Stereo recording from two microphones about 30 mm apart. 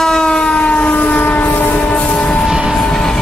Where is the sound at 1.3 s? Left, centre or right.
Left.